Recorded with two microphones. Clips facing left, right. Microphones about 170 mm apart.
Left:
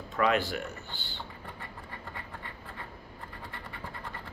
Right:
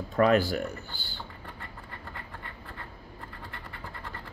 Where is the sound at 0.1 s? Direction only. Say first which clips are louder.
Right 5 dB; 40° right (ahead or behind).